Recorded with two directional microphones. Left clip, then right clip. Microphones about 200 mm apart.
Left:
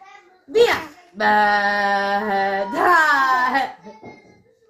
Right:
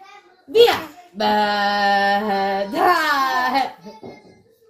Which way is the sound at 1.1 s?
30° right (ahead or behind).